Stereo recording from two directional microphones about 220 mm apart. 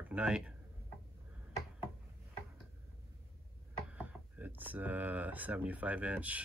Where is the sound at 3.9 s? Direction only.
5° right (ahead or behind).